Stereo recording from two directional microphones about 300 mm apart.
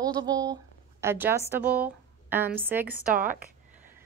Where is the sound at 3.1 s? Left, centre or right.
Right.